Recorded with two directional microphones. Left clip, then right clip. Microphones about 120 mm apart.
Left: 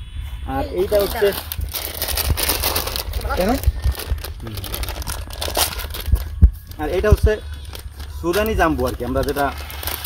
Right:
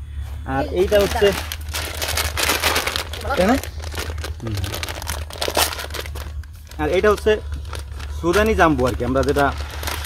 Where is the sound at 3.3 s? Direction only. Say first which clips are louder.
Right 2 dB; 90° left.